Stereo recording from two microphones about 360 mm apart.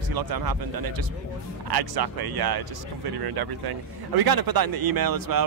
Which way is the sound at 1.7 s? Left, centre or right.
Right.